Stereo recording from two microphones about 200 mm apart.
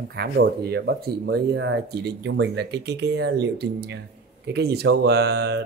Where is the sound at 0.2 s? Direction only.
55° right (ahead or behind).